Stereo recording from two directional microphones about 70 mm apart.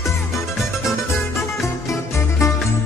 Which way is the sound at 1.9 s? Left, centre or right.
Left.